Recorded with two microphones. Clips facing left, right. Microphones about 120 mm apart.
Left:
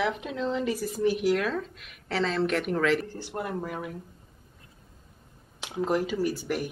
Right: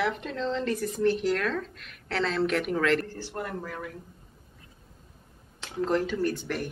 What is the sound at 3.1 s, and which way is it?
Speech, 15° left (ahead or behind).